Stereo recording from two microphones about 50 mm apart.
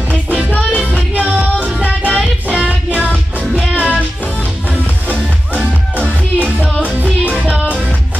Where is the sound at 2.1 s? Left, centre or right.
Centre.